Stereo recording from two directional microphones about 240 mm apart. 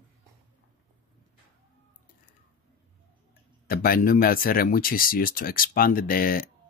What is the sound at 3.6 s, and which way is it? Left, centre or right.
Speech, left.